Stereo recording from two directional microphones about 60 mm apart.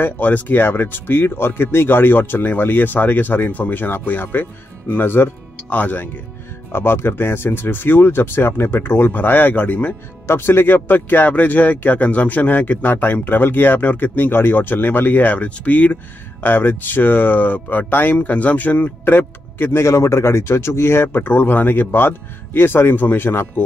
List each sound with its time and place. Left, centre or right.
0.0 s speech: left
6.7 s speech: left
10.2 s speech: left
19.8 s speech: left